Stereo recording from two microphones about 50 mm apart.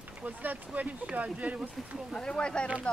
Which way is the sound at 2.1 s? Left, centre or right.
Centre.